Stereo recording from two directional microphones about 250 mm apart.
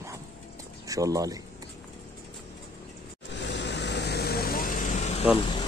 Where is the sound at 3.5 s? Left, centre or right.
Left.